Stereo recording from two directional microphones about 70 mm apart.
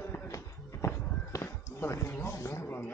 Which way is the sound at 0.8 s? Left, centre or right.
Left.